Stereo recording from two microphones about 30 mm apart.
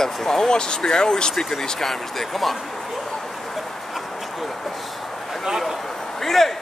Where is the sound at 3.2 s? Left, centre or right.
Centre.